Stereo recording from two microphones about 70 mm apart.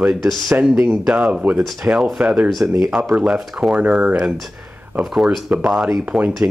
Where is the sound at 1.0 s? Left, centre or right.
Centre.